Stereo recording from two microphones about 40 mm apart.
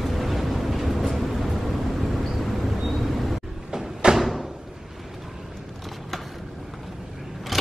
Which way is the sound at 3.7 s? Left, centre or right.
Centre.